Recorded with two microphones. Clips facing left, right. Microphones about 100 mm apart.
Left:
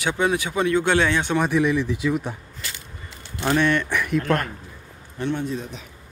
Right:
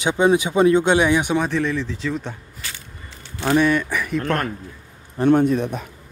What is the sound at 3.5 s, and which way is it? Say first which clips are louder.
Speech: right 3 dB; 10° right (ahead or behind).